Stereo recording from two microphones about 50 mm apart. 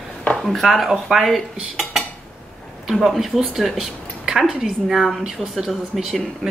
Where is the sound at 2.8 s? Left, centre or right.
Centre.